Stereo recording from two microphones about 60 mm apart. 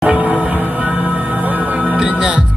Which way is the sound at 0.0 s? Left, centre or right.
Right.